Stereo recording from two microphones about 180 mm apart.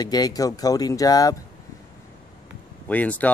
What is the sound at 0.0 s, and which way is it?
Speech, 20° left (ahead or behind).